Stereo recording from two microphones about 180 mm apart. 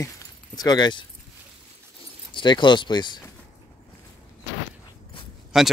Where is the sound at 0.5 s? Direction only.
20° left (ahead or behind).